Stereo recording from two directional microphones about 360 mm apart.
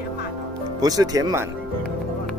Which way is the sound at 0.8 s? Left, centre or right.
Centre.